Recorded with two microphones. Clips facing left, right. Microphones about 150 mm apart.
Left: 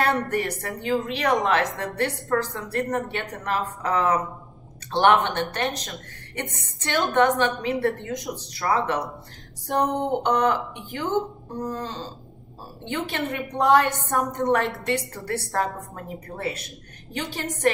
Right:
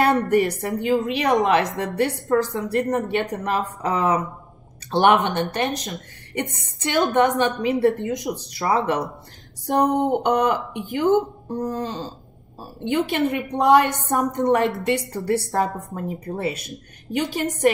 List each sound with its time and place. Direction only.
0.0 s a woman's voice: 15° right (ahead or behind)
11.7 s a sound: 25° right (ahead or behind)
12.8 s a woman's voice: 15° right (ahead or behind)